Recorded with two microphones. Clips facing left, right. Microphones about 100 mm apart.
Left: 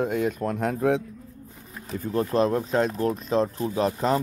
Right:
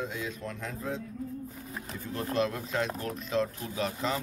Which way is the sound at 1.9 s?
40° left (ahead or behind).